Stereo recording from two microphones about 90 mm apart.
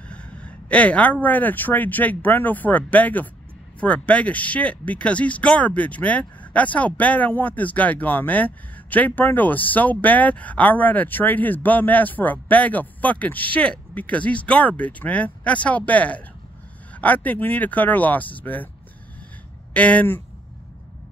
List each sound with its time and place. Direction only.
0.1 s speech: 10° left (ahead or behind)
19.7 s speech: 15° left (ahead or behind)